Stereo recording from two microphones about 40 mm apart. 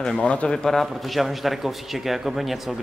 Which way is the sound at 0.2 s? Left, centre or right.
Left.